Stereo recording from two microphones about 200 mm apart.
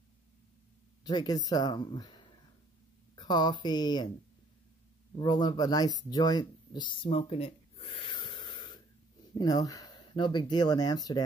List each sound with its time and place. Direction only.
1.0 s speech: 20° left (ahead or behind)
3.2 s speech: 20° left (ahead or behind)
5.2 s speech: 20° left (ahead or behind)